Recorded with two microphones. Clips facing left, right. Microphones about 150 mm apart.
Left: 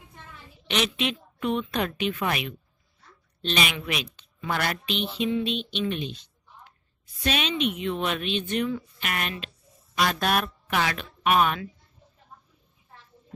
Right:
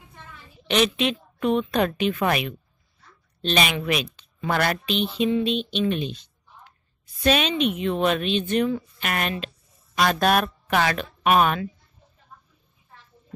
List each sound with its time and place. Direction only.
0.7 s a woman's voice: 40° right (ahead or behind)
3.4 s a woman's voice: 40° right (ahead or behind)
7.2 s a woman's voice: 40° right (ahead or behind)